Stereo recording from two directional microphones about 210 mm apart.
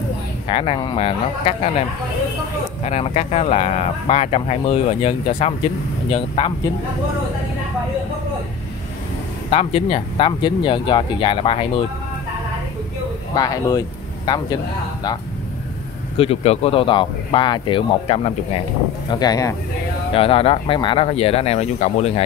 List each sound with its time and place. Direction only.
0.5 s speech: 25° left (ahead or behind)
9.5 s speech: 30° left (ahead or behind)
13.3 s speech: 20° left (ahead or behind)
16.2 s speech: 30° left (ahead or behind)